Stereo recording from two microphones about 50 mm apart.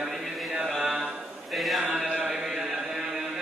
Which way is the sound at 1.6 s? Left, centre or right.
Centre.